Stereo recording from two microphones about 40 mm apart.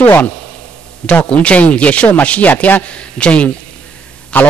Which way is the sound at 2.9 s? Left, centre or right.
Left.